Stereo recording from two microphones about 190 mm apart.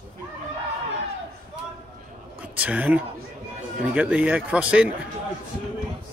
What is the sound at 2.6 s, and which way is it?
Speech, 5° right (ahead or behind).